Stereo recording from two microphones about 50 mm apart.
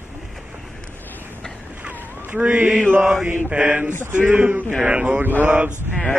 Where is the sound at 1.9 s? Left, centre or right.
Right.